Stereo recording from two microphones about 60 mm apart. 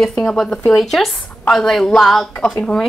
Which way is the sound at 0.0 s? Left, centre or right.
Centre.